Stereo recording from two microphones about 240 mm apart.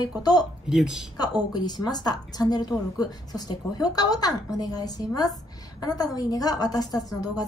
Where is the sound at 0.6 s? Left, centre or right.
Centre.